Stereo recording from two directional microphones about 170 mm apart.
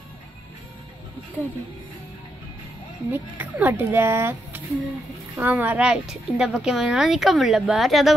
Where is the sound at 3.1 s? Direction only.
10° right (ahead or behind).